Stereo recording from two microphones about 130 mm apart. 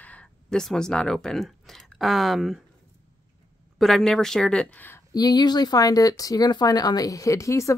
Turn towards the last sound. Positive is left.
turn(degrees=25)  # may be behind; listen again after turning